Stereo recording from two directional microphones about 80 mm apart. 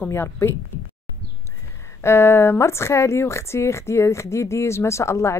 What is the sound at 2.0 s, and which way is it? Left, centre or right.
Speech, left.